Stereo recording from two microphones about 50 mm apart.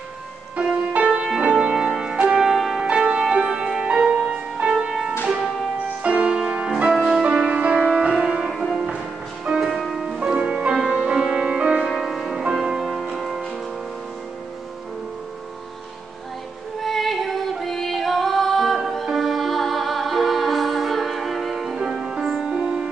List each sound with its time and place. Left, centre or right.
0.9 s music: right
1.7 s music: centre
2.5 s music: centre
2.8 s music: centre
6.0 s music: right
8.5 s music: centre
10.1 s music: right
12.0 s music: centre
12.3 s music: centre
12.5 s music: centre
16.8 s music: centre
21.7 s music: centre